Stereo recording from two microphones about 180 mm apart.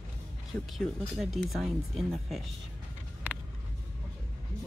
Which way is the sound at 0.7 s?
Centre (ahead or behind).